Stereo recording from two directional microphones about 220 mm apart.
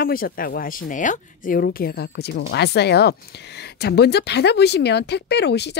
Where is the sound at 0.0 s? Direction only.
40° left (ahead or behind).